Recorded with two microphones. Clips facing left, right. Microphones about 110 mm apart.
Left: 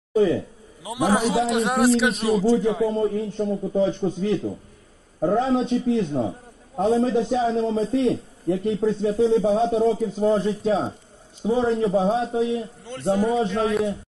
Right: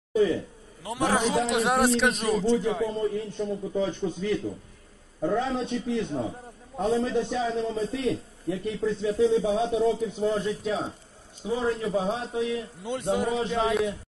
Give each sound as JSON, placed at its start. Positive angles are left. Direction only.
{"t": 0.1, "sound": "a man's voice", "side_deg": 40}
{"t": 0.8, "sound": "a man's voice", "side_deg": 10}
{"t": 2.9, "sound": "a man's voice", "side_deg": 45}
{"t": 5.6, "sound": "a man's voice", "side_deg": 45}
{"t": 11.7, "sound": "a man's voice", "side_deg": 45}
{"t": 12.2, "sound": "a man's voice", "side_deg": 25}
{"t": 13.5, "sound": "a man's voice", "side_deg": 0}